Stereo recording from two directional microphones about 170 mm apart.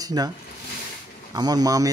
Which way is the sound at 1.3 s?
20° right (ahead or behind).